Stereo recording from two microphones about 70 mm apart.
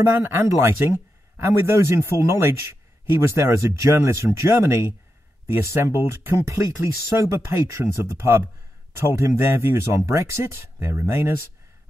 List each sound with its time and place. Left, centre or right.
0.0 s speech: right